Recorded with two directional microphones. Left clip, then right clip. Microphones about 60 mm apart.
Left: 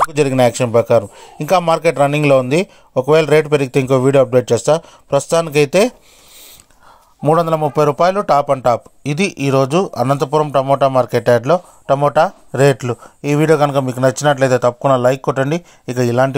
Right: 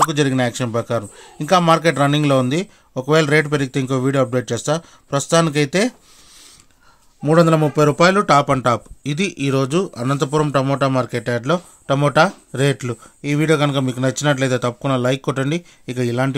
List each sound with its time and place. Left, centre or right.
0.1 s a man's voice: left
7.2 s a man's voice: left
8.2 s a man's voice: left
10.1 s a man's voice: left
11.1 s a man's voice: left
11.9 s speech: centre
12.2 s speech: left
15.2 s speech: centre
15.9 s a man's voice: left